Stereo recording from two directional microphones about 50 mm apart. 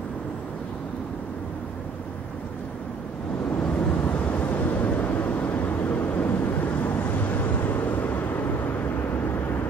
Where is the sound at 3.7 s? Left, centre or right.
Left.